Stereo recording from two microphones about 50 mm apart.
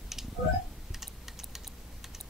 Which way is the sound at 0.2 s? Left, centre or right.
Centre.